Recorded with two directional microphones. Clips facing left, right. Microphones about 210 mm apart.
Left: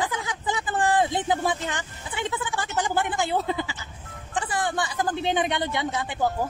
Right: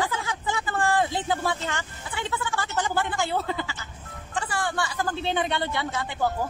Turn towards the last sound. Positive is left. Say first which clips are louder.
# left 1 dB
turn(degrees=15)  # may be behind; listen again after turning